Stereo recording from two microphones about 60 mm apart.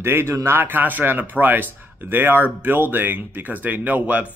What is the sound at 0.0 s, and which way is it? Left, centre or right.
Speech, right.